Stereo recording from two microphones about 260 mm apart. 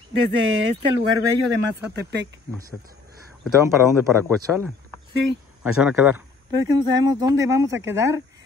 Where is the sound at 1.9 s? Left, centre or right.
Right.